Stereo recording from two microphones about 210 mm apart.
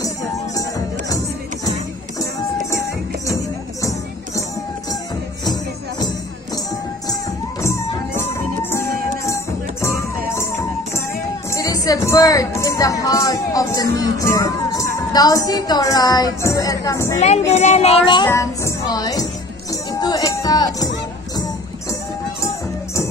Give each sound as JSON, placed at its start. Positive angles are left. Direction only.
{"t": 0.0, "sound": "music", "side_deg": 15}
{"t": 2.7, "sound": "music", "side_deg": 15}
{"t": 5.4, "sound": "music", "side_deg": 20}
{"t": 17.5, "sound": "speech", "side_deg": 30}
{"t": 18.3, "sound": "music", "side_deg": 15}